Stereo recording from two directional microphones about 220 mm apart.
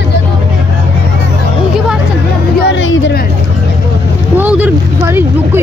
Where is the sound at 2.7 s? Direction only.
55° left (ahead or behind).